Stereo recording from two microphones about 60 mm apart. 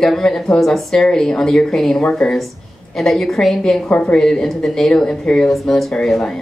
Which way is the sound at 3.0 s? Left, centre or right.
Centre.